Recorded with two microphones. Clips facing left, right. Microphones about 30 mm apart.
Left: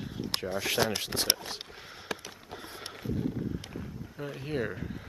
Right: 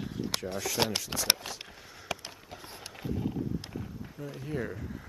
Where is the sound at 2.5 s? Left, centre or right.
Left.